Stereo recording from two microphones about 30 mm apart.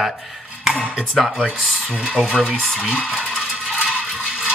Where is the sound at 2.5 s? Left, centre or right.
Left.